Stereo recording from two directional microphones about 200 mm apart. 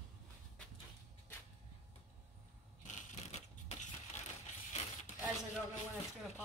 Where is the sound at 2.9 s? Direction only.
40° left (ahead or behind).